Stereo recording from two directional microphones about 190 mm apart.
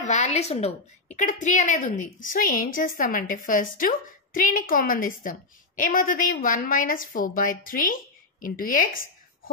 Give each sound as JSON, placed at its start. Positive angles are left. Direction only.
{"t": 0.0, "sound": "a woman's voice", "side_deg": 40}